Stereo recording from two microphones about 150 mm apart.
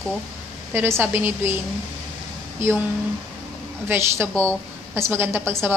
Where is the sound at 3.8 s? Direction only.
15° right (ahead or behind).